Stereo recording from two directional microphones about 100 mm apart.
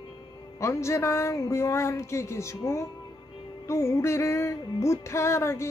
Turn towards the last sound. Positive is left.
turn(degrees=30)  # may be behind; listen again after turning